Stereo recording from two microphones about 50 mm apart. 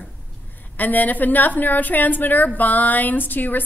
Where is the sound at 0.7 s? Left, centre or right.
Left.